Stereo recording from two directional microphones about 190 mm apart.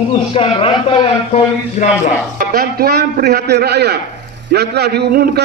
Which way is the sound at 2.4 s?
50° right (ahead or behind).